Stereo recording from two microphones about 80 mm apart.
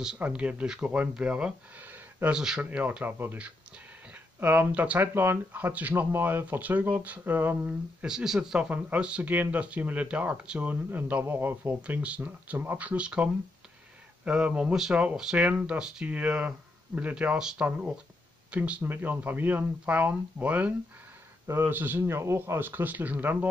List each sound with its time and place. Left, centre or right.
0.2 s speech: centre
2.3 s speech: centre
2.8 s speech: centre
8.0 s speech: centre; by 11.7 s right
11.8 s speech: centre
21.5 s speech: right